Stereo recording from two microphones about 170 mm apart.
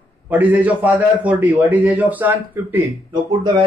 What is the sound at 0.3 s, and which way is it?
A man's voice, 10° right (ahead or behind).